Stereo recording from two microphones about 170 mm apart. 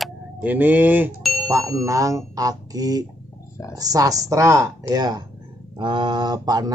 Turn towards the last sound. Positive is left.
turn(degrees=-25)  # may be behind; listen again after turning